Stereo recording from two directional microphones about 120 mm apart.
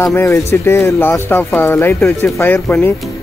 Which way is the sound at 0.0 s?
20° left (ahead or behind).